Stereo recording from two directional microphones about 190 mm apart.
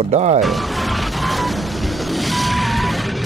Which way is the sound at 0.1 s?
35° right (ahead or behind).